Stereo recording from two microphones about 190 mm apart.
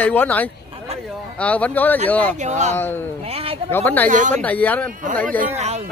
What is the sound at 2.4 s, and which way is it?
Speech, 40° right (ahead or behind).